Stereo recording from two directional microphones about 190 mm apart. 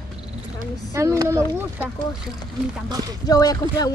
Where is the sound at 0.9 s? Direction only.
15° right (ahead or behind).